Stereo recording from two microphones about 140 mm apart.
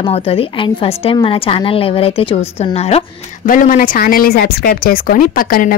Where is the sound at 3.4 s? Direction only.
70° left (ahead or behind); by 5.8 s 90° left.